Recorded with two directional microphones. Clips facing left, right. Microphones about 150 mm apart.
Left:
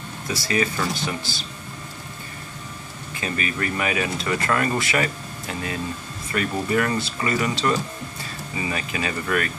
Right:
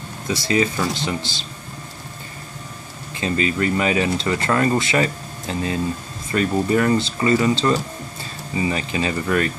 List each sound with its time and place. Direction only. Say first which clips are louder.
0.3 s speech: right 4 dB; 25° right (ahead or behind)
3.2 s speech: right 6 dB; 25° right (ahead or behind)